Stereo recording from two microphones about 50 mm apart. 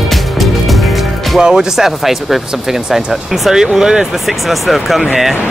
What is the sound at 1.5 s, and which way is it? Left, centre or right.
Speech, centre.